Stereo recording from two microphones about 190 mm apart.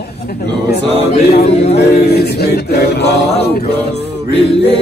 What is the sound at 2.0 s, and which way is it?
Mantra, 60° left (ahead or behind).